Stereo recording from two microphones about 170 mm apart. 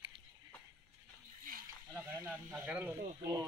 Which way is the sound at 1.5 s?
55° right (ahead or behind).